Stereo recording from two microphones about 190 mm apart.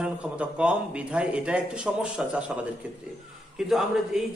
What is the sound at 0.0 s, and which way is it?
Speech, 5° right (ahead or behind).